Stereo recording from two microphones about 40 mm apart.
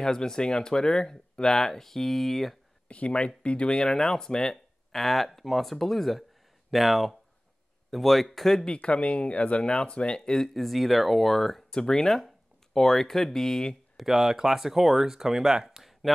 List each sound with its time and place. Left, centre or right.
0.0 s speech: centre
2.9 s speech: left
4.9 s speech: centre
8.7 s speech: left
10.3 s speech: centre
11.7 s speech: centre
13.9 s speech: centre
15.8 s a sound: centre